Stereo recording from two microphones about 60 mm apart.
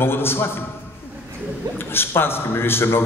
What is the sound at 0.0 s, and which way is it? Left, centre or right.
Speech, left.